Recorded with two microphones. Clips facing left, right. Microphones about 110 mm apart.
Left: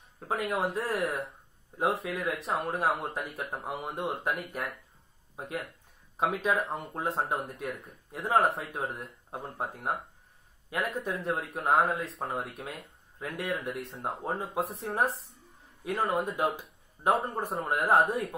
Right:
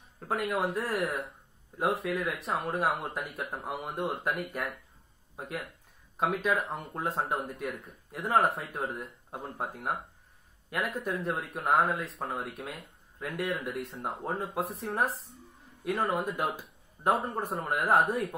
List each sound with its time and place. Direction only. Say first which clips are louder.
0.3 s speech: even; centre (ahead or behind)
2.0 s speech: even; centre (ahead or behind)
9.3 s speech: left 1 dB; 20° left (ahead or behind)
10.8 s speech: even; centre (ahead or behind)